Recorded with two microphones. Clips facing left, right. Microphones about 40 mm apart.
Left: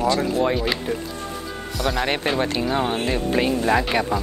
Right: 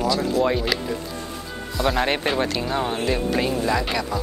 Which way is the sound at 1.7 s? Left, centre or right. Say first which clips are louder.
Right 2 dB; right.